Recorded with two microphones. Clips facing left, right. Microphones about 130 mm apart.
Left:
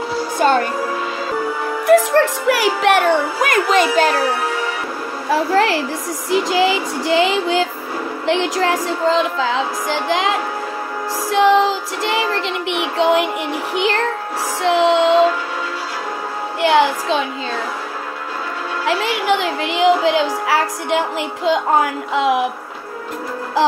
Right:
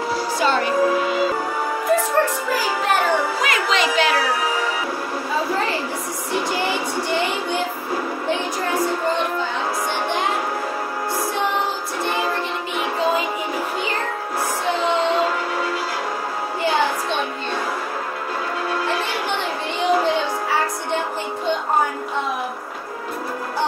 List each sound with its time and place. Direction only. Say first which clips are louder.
0.4 s music: left 6 dB; 50° left (ahead or behind)
1.9 s speech: left 7 dB; 85° left
3.3 s speech: left 5 dB; 50° left (ahead or behind)
5.3 s speech: left 8 dB; 80° left
11.3 s child singing: left 14 dB; 90° left; by 13.3 s 75° left (ahead or behind)
13.7 s speech: left 6 dB; 80° left
14.6 s speech: left 8 dB; 90° left
16.6 s speech: left 7 dB; 85° left
18.9 s speech: left 6 dB; 90° left